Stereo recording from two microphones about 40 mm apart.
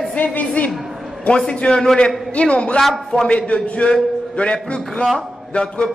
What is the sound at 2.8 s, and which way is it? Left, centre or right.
Music, centre.